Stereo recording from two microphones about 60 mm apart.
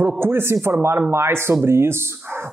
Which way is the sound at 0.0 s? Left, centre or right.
Right.